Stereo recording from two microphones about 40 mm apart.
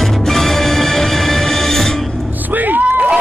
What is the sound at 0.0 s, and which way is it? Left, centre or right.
Music, centre.